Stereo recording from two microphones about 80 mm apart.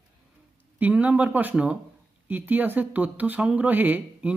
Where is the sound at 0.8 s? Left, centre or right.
Centre.